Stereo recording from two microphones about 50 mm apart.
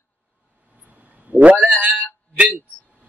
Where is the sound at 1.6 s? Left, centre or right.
Right.